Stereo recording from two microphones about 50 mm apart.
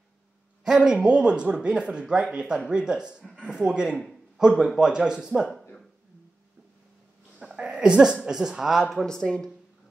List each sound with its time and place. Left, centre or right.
0.7 s speech: centre
7.3 s a sound: centre
8.2 s speech: centre
9.0 s speech: centre